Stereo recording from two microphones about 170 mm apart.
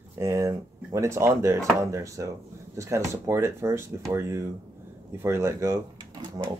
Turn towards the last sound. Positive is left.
turn(degrees=-20)  # may be behind; listen again after turning